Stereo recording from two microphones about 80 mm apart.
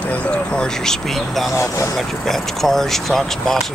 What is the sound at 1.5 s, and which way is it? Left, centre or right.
Speech, left.